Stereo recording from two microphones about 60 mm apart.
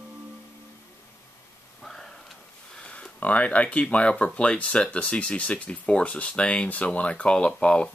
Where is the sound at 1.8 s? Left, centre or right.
Centre.